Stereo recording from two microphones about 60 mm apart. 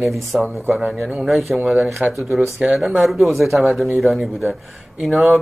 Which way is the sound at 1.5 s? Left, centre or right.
Centre.